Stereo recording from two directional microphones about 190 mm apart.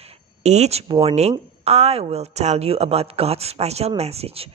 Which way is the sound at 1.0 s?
35° right (ahead or behind).